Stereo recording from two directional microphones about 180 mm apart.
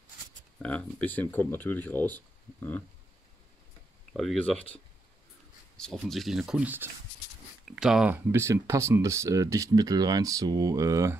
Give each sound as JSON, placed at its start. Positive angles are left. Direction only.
{"t": 0.6, "sound": "speech", "side_deg": 10}
{"t": 4.1, "sound": "speech", "side_deg": 0}
{"t": 5.8, "sound": "speech", "side_deg": 5}